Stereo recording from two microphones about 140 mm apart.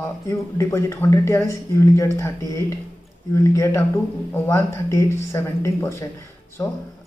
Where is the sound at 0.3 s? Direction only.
20° left (ahead or behind).